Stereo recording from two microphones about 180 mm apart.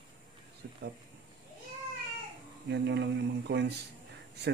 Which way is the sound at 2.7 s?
75° right (ahead or behind).